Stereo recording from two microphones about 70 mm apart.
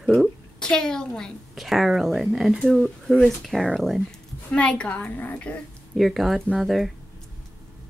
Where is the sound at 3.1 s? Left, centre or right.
Centre.